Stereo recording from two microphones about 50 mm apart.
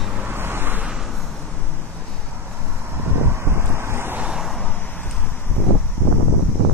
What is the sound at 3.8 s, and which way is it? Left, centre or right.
Wind, right.